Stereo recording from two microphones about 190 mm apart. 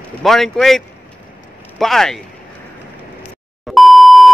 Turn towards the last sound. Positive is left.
turn(degrees=0)  # may be behind; listen again after turning